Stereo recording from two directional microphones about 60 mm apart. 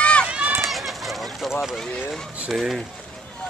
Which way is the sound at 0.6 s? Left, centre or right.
Centre.